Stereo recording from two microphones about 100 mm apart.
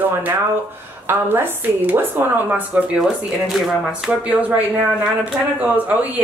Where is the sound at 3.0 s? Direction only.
Centre (ahead or behind).